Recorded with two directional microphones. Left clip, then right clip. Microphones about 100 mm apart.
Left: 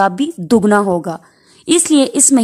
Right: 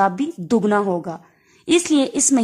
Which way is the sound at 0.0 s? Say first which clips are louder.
Left 4 dB; 35° left (ahead or behind).